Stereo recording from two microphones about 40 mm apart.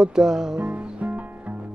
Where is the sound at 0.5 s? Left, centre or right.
Right.